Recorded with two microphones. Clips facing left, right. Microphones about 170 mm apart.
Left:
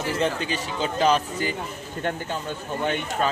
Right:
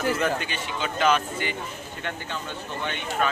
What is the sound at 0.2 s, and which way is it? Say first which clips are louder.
A man's voice: left 2 dB; 35° left (ahead or behind).